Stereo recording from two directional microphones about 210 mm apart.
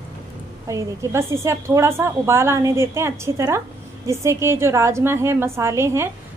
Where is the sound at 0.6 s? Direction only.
15° right (ahead or behind).